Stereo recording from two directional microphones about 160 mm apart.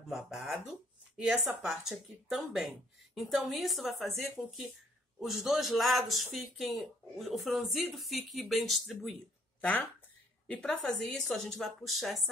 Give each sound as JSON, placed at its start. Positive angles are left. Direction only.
{"t": 0.1, "sound": "a man's voice", "side_deg": 0}